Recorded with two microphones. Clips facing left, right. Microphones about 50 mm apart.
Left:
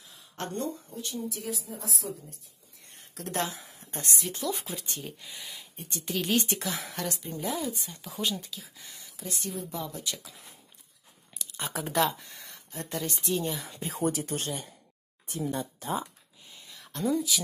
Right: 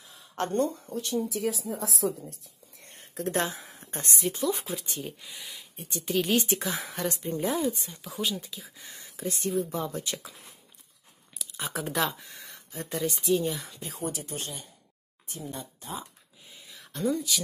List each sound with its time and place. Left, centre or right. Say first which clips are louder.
0.4 s speech: right 7 dB; right
0.8 s speech: right 6 dB; right
3.2 s speech: right 3 dB; right
4.3 s speech: right 6 dB; centre
7.1 s speech: right 6 dB; right
7.8 s speech: right 1 dB; centre
8.8 s speech: right 10 dB; right
11.3 s speech: right 1 dB; centre
13.8 s speech: left 6 dB; left
15.2 s speech: left 6 dB; left
16.4 s a sound: even; centre